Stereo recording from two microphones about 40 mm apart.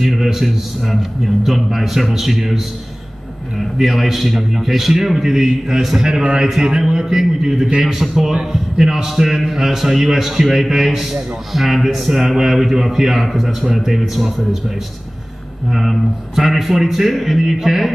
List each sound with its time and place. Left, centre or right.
0.0 s a man's voice: centre
3.7 s a man's voice: centre
6.0 s a man's voice: centre
8.3 s a man's voice: right
8.7 s a man's voice: centre
15.7 s a man's voice: centre